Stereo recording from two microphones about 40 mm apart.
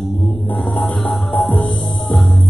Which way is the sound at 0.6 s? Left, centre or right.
Centre.